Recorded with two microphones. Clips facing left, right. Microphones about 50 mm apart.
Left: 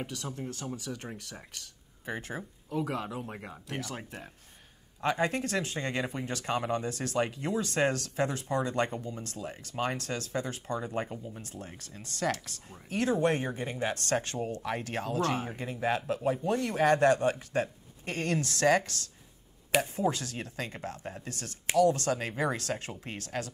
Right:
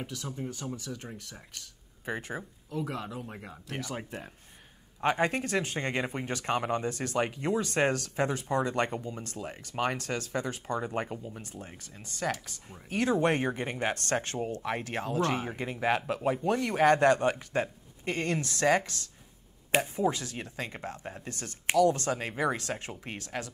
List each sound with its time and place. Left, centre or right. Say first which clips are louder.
0.0 s speech: even; centre
2.8 s speech: left 2 dB; centre
5.0 s speech: right 1 dB; right
8.5 s speech: right 1 dB; right
10.3 s speech: right 1 dB; right
11.9 s speech: left 1 dB; centre
12.9 s speech: right 1 dB; right
15.5 s speech: right 2 dB; right
21.3 s speech: right 4 dB; right